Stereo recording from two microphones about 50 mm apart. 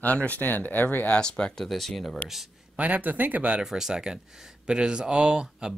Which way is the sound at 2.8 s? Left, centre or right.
Right.